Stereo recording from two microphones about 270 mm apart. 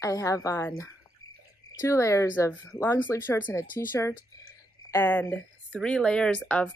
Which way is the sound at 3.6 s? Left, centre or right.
Left.